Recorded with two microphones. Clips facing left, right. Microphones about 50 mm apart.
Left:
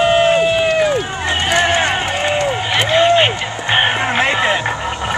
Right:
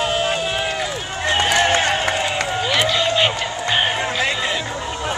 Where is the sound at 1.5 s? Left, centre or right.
Centre.